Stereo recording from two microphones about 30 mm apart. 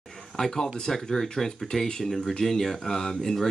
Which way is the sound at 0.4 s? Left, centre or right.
Centre.